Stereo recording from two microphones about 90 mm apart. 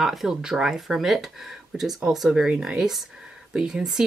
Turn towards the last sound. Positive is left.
turn(degrees=-5)  # may be behind; listen again after turning